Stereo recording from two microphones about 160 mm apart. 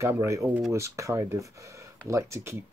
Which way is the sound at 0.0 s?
15° right (ahead or behind).